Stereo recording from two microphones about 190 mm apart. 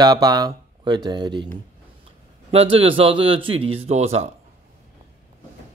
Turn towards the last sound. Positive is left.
turn(degrees=-35)  # may be behind; listen again after turning